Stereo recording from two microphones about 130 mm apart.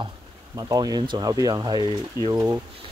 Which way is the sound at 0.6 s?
30° right (ahead or behind).